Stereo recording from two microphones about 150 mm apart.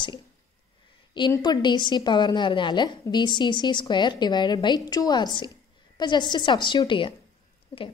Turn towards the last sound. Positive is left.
turn(degrees=35)  # may be behind; listen again after turning